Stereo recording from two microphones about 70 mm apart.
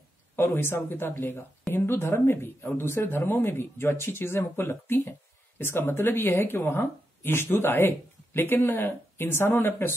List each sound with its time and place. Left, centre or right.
0.4 s speech: left